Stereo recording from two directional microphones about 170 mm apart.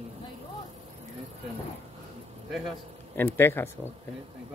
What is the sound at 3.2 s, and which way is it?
Speech, 15° left (ahead or behind).